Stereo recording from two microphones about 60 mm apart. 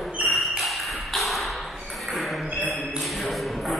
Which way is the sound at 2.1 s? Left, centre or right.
Centre.